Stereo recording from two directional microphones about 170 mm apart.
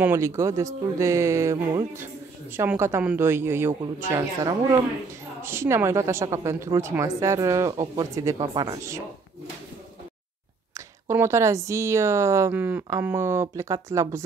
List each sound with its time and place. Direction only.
0.0 s speech: 15° right (ahead or behind)
11.1 s speech: 15° right (ahead or behind)